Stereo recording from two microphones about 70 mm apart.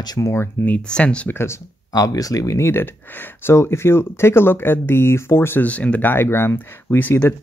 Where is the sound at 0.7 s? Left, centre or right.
Centre.